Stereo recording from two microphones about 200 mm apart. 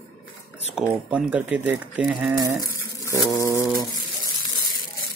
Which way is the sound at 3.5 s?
20° left (ahead or behind).